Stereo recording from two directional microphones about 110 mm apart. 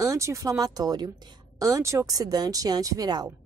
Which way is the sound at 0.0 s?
30° right (ahead or behind).